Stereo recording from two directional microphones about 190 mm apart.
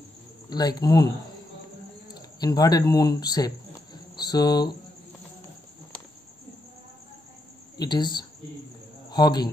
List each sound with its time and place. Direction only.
0.5 s speech: 20° left (ahead or behind)
2.4 s speech: 20° left (ahead or behind)
7.7 s speech: 20° left (ahead or behind)